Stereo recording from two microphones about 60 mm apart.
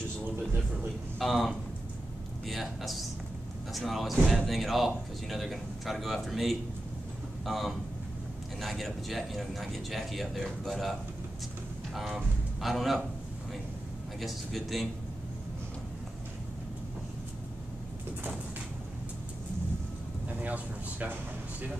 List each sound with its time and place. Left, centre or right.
1.2 s speech: centre
14.2 s speech: centre
20.2 s a sound: right